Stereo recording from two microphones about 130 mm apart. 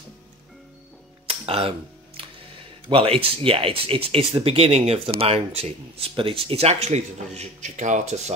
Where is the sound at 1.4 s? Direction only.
45° right (ahead or behind).